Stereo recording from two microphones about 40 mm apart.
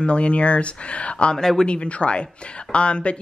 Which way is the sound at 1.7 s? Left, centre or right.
Left.